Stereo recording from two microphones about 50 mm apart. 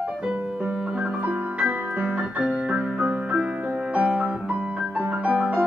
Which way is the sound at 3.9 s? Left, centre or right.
Right.